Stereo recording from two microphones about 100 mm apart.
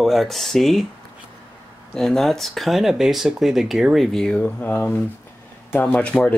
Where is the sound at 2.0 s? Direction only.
5° left (ahead or behind).